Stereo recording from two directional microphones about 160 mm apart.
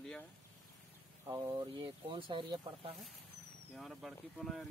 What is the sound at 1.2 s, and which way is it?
Speech, 20° right (ahead or behind).